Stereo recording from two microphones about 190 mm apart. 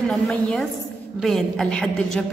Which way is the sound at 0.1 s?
5° left (ahead or behind).